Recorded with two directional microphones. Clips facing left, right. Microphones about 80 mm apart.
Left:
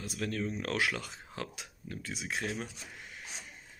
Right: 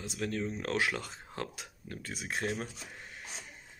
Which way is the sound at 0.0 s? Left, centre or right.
Right.